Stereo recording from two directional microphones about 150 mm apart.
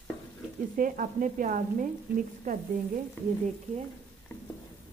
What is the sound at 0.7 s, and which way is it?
Frying, 60° right (ahead or behind).